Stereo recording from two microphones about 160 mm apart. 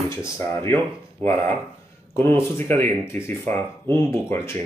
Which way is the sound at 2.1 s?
15° left (ahead or behind).